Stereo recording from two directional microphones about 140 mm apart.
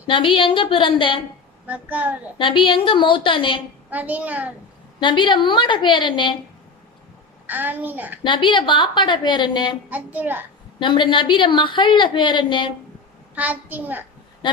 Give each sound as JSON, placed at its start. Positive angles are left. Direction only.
{"t": 0.0, "sound": "a woman's voice", "side_deg": 35}
{"t": 1.7, "sound": "a child's voice", "side_deg": -10}
{"t": 2.3, "sound": "a woman's voice", "side_deg": 35}
{"t": 3.9, "sound": "a child's voice", "side_deg": -10}
{"t": 5.0, "sound": "a woman's voice", "side_deg": 35}
{"t": 7.4, "sound": "a child's voice", "side_deg": -15}
{"t": 8.2, "sound": "a woman's voice", "side_deg": 35}
{"t": 9.8, "sound": "a child's voice", "side_deg": -10}
{"t": 10.8, "sound": "a woman's voice", "side_deg": 35}
{"t": 13.3, "sound": "a child's voice", "side_deg": -10}